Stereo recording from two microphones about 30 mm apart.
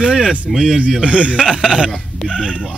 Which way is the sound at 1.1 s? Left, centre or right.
Right.